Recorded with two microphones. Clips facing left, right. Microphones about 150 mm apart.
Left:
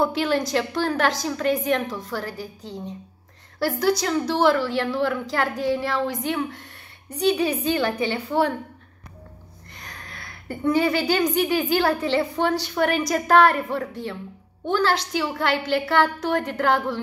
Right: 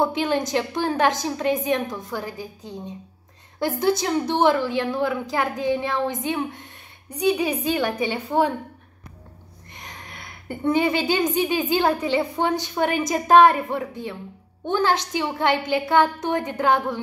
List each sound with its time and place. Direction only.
0.0 s a woman's voice: 20° right (ahead or behind)
9.8 s a sound: 20° right (ahead or behind)
11.7 s a woman's voice: 20° right (ahead or behind)